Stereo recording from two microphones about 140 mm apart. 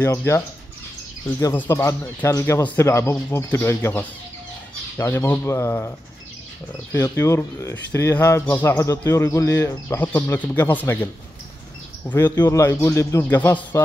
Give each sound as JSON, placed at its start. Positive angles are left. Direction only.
{"t": 0.0, "sound": "speech", "side_deg": 20}
{"t": 12.2, "sound": "speech", "side_deg": 30}